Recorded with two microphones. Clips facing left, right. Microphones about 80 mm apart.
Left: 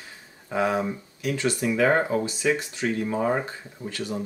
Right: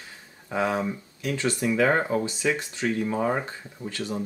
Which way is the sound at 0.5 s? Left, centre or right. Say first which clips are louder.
Left 1 dB; centre.